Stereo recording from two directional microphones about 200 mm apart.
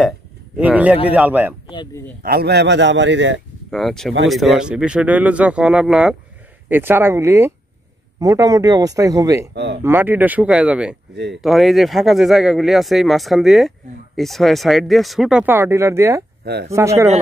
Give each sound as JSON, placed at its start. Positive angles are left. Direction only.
{"t": 0.6, "sound": "speech", "side_deg": -5}
{"t": 1.7, "sound": "speech", "side_deg": 20}
{"t": 2.2, "sound": "a man's voice", "side_deg": -55}
{"t": 3.7, "sound": "speech", "side_deg": 0}
{"t": 9.5, "sound": "a man's voice", "side_deg": -60}
{"t": 9.8, "sound": "speech", "side_deg": -10}